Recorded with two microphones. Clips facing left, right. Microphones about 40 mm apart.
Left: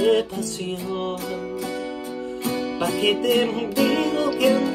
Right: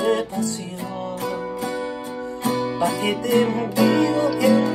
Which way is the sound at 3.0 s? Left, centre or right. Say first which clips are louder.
Left 2 dB; left.